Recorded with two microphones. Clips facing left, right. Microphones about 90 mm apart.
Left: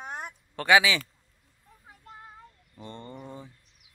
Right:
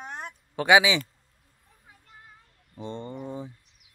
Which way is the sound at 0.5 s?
15° right (ahead or behind).